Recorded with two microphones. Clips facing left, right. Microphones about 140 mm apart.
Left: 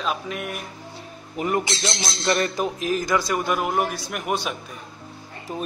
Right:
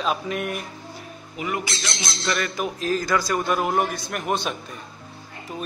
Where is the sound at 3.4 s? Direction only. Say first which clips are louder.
Right 1 dB; 5° left (ahead or behind).